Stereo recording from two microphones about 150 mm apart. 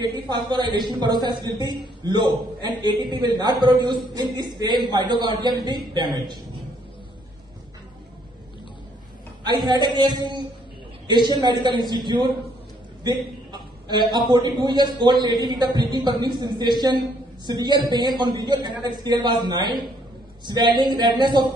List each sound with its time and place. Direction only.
0.3 s a man's voice: 30° right (ahead or behind)
9.7 s a man's voice: 30° right (ahead or behind)